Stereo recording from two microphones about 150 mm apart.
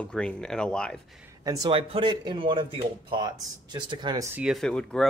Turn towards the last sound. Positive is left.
turn(degrees=5)  # may be behind; listen again after turning